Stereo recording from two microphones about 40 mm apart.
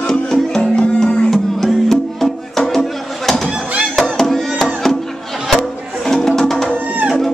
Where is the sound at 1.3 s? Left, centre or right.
Centre.